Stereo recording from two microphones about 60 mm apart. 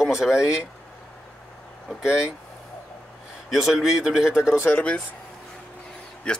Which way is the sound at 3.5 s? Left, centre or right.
Centre.